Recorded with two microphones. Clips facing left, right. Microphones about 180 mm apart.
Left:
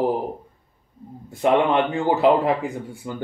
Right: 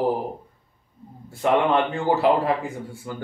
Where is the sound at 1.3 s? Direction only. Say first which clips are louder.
Left 2 dB; 20° left (ahead or behind).